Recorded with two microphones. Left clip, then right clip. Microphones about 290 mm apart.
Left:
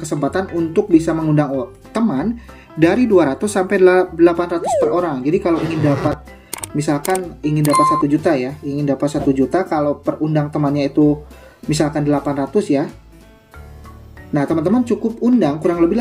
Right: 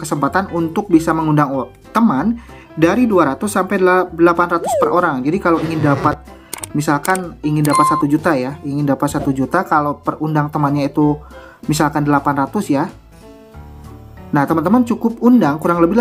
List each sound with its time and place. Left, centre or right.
0.0 s speech: centre
4.9 s speech: centre
5.5 s speech: centre
7.9 s speech: centre
14.3 s speech: centre